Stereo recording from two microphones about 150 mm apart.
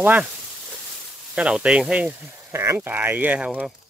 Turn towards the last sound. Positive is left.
turn(degrees=-10)  # may be behind; listen again after turning